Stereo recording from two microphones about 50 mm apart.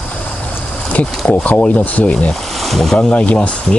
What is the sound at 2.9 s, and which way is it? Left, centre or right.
Speech, left.